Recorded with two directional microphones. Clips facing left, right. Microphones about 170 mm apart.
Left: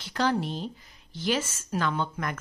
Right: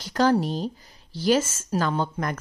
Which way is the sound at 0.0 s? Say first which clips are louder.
Right 6 dB; 40° right (ahead or behind).